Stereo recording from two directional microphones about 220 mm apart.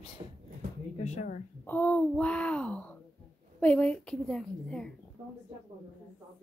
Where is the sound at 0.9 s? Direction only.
30° left (ahead or behind).